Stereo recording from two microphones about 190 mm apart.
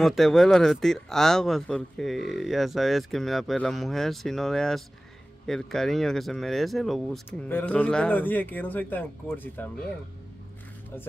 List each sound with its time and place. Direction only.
0.0 s speech: centre (ahead or behind)